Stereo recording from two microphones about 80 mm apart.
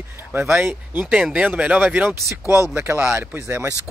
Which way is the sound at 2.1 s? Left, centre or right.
Right.